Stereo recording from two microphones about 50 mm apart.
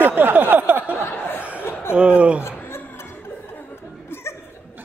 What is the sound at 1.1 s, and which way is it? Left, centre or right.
Laughter, left.